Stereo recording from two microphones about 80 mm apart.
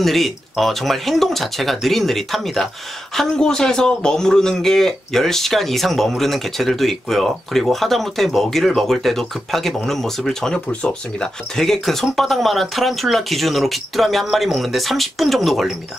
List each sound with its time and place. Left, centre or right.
0.0 s a man's voice: centre